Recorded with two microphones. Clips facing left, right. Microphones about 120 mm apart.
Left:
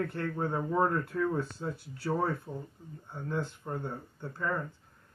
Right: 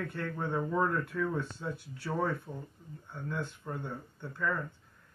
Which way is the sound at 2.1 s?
5° left (ahead or behind).